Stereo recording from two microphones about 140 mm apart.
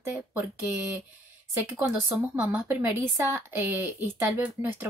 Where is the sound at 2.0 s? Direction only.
20° right (ahead or behind).